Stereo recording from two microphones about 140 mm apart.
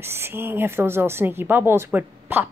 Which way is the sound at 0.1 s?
15° right (ahead or behind).